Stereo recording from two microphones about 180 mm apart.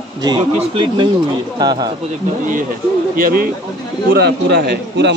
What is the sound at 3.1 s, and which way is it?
Speech, 55° right (ahead or behind).